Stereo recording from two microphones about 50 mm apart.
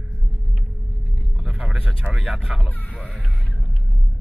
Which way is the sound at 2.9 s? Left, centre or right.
Left.